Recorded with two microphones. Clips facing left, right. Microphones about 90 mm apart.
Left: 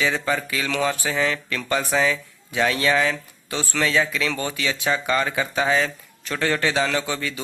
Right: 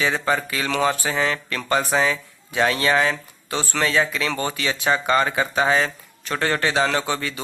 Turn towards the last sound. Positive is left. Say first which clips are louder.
# right 2 dB
turn(degrees=-25)  # may be behind; listen again after turning